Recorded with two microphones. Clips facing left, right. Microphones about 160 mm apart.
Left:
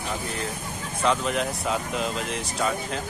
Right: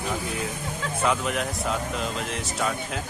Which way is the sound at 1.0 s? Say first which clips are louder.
Left 2 dB; 5° right (ahead or behind).